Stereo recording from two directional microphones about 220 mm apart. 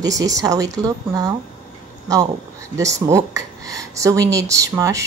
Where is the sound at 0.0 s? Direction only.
15° right (ahead or behind).